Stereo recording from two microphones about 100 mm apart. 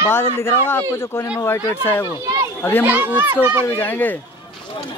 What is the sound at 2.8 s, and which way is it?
Speech, 15° right (ahead or behind).